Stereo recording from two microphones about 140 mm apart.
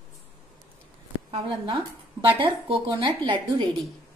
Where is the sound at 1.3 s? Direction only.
35° right (ahead or behind).